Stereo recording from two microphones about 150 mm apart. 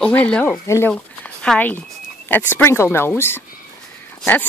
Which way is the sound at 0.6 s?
20° left (ahead or behind).